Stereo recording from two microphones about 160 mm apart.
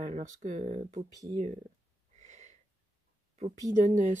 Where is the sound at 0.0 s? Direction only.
45° right (ahead or behind).